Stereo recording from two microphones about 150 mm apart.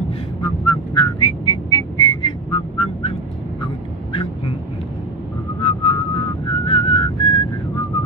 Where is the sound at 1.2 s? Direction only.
30° left (ahead or behind).